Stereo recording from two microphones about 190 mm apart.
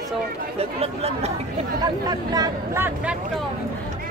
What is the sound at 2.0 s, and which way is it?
Speech, 20° right (ahead or behind).